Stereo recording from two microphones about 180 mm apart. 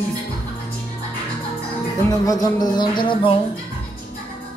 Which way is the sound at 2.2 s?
25° left (ahead or behind).